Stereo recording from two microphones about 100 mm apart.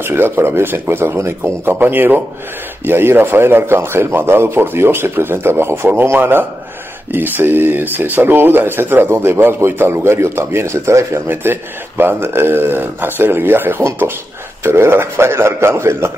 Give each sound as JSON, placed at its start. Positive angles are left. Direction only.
{"t": 0.0, "sound": "speech", "side_deg": -25}